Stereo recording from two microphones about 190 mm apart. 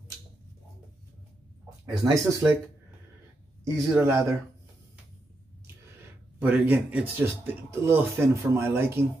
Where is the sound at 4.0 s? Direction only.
15° right (ahead or behind).